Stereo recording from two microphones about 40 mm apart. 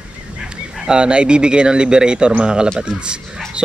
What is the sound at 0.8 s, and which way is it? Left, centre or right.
Speech, right.